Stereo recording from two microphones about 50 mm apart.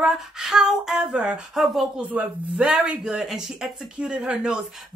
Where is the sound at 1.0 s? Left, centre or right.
Centre.